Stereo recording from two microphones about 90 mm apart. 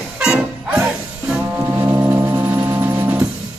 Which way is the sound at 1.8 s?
20° right (ahead or behind).